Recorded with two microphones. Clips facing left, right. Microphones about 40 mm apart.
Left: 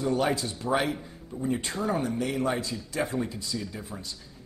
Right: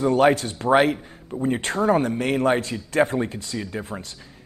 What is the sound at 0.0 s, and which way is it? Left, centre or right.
Speech, right.